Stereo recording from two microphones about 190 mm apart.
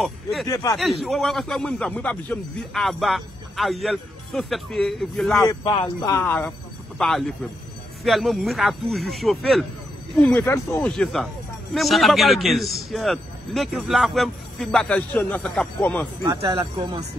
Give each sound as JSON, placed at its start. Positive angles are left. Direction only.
{"t": 0.0, "sound": "a man's voice", "side_deg": 0}
{"t": 0.5, "sound": "speech", "side_deg": 20}
{"t": 1.0, "sound": "a man's voice", "side_deg": 0}
{"t": 5.5, "sound": "a man's voice", "side_deg": 25}
{"t": 10.2, "sound": "speech", "side_deg": 10}
{"t": 11.0, "sound": "a man's voice", "side_deg": 0}
{"t": 16.3, "sound": "speech", "side_deg": -25}